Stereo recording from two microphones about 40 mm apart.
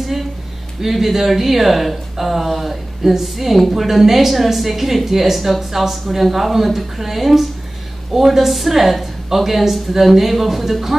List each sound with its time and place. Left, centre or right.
0.7 s speech: centre